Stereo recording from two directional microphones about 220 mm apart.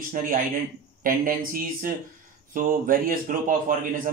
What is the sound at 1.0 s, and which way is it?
Speech, 40° right (ahead or behind).